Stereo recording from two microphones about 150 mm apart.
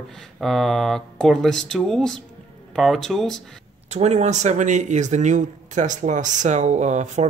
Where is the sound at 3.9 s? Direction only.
50° right (ahead or behind).